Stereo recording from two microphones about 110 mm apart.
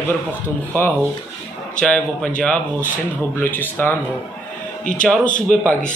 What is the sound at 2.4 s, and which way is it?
Speech, 15° left (ahead or behind).